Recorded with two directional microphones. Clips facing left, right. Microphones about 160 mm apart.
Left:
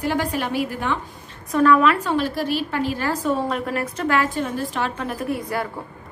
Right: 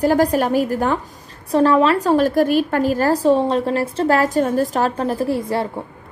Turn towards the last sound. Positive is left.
turn(degrees=-30)  # may be behind; listen again after turning